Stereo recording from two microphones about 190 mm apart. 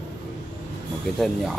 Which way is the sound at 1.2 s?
Centre (ahead or behind).